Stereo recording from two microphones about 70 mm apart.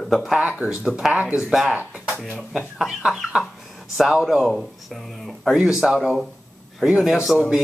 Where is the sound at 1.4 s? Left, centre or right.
Centre.